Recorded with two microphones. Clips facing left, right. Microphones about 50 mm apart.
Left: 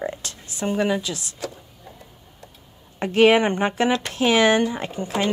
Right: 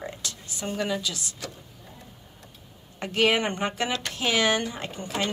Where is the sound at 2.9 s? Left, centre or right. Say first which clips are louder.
Left 7 dB; left.